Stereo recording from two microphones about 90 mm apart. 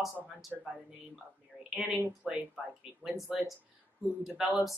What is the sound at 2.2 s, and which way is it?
Speech, centre (ahead or behind).